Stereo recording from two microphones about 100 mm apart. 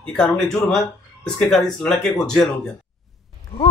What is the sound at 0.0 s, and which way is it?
A woman's voice, 5° left (ahead or behind).